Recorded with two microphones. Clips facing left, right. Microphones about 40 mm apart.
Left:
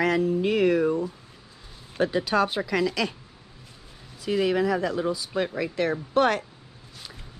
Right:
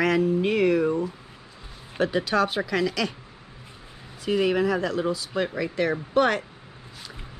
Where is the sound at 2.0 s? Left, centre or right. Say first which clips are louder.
Even; right.